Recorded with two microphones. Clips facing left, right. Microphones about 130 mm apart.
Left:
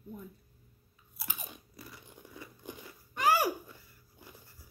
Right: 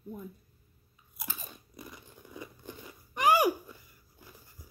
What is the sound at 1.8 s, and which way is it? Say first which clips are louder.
Biting: right 5 dB; 20° right (ahead or behind).